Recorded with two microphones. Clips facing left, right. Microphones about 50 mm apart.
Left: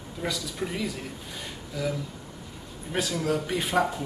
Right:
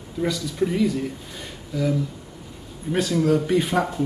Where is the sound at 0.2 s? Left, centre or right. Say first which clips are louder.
Right 8 dB; centre.